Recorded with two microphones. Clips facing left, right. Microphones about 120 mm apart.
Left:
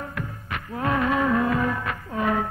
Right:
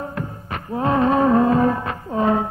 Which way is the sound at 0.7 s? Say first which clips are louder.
Right 6 dB; 30° right (ahead or behind).